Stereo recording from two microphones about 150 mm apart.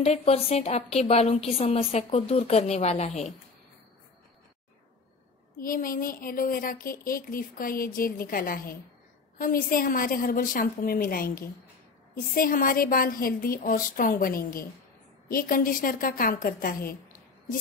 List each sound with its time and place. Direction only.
0.0 s a woman's voice: 45° left (ahead or behind)
5.6 s speech: 70° left (ahead or behind)